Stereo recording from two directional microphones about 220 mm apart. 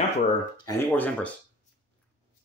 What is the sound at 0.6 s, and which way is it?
Speech, 5° left (ahead or behind).